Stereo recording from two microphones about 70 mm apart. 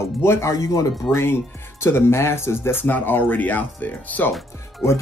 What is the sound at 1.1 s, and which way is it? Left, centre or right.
Speech, left.